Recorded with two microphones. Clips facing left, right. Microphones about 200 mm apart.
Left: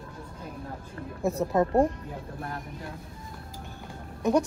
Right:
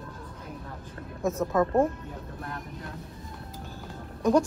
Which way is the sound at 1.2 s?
35° left (ahead or behind).